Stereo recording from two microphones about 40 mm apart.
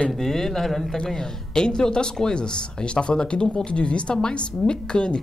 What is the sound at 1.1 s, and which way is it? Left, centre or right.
Speech, centre.